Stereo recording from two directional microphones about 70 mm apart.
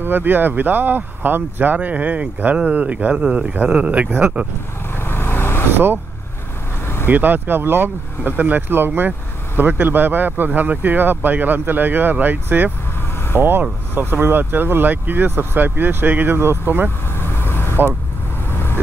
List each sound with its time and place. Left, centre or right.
0.0 s speech: right
4.9 s vehicle: left
5.7 s speech: right
7.1 s speech: right
17.1 s vehicle: left